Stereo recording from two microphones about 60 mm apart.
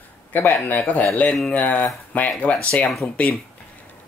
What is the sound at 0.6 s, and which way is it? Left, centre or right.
Speech, left.